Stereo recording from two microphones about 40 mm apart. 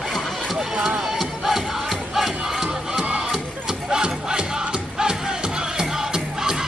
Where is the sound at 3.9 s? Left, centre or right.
Centre.